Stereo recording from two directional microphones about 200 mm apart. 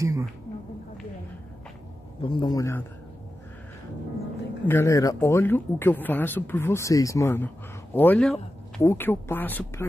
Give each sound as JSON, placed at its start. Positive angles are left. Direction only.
{"t": 0.0, "sound": "a sound", "side_deg": -15}
{"t": 2.2, "sound": "a man's voice", "side_deg": 25}
{"t": 4.6, "sound": "speech", "side_deg": 10}